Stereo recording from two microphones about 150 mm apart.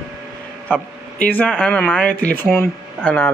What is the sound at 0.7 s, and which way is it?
Speech, 10° left (ahead or behind).